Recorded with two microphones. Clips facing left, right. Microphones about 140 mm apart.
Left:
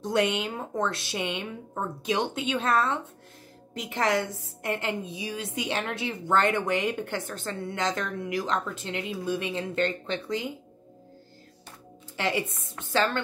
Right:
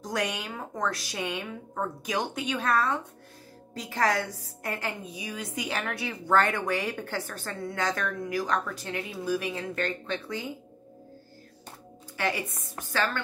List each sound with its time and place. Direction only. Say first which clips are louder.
0.0 s a woman's voice: left 6 dB; 25° left (ahead or behind)
12.2 s a woman's voice: left 2 dB; 25° left (ahead or behind)